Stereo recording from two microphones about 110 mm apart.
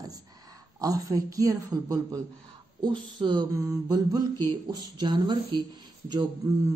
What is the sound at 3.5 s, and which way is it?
A woman's voice, 30° right (ahead or behind).